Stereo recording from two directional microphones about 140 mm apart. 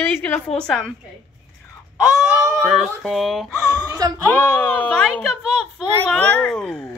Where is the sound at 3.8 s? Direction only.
25° right (ahead or behind).